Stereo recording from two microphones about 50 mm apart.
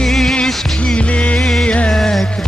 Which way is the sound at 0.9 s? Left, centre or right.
Left.